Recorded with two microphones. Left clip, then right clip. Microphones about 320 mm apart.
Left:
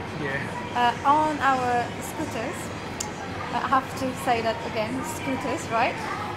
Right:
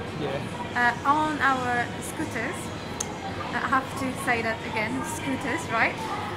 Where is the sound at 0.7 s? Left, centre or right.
Centre.